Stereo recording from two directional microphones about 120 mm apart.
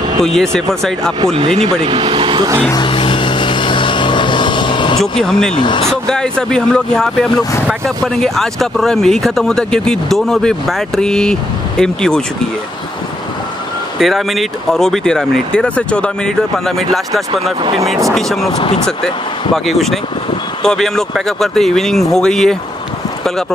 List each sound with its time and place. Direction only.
0.2 s speech: 5° left (ahead or behind)
1.2 s speech: 50° right (ahead or behind)
2.7 s vehicle: 45° left (ahead or behind)
5.0 s speech: 5° left (ahead or behind)
13.9 s speech: centre (ahead or behind)
17.3 s speech: 45° right (ahead or behind)
18.0 s speech: centre (ahead or behind)
19.5 s speech: centre (ahead or behind)